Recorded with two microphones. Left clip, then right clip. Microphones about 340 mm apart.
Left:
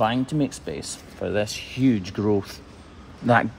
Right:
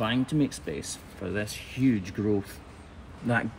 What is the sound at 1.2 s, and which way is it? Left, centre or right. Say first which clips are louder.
Speech: left 8 dB; centre.